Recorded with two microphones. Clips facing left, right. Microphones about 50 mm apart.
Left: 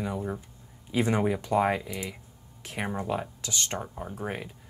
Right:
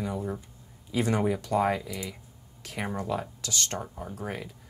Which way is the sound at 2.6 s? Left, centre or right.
Centre.